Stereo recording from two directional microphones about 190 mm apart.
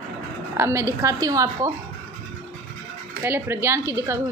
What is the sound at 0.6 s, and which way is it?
A woman's voice, 15° right (ahead or behind).